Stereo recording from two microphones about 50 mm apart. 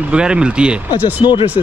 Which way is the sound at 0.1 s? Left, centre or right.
Centre.